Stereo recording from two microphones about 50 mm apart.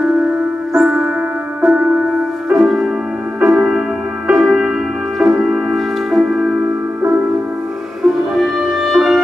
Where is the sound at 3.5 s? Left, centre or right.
Centre.